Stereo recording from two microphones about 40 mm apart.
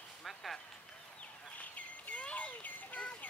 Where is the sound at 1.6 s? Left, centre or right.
Left.